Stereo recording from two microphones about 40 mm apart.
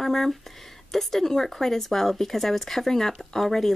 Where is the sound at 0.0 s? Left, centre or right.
Centre.